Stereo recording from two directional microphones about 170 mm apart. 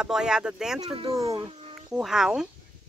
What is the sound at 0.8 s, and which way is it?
Speech, 35° right (ahead or behind).